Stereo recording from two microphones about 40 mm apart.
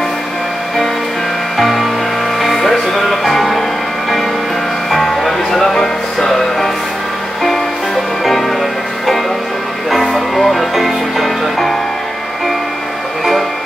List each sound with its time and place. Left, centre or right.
1.6 s music: centre
4.9 s music: centre
10.1 s music: centre